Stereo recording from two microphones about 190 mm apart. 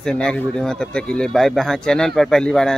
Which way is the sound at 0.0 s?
5° left (ahead or behind).